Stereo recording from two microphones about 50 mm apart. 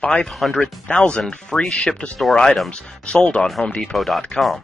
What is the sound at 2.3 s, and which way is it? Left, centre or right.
Speech, centre.